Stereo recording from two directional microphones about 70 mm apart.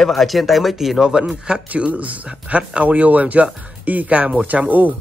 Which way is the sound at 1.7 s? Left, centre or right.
Right.